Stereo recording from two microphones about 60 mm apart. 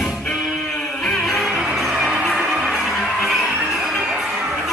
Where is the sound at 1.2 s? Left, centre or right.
Centre.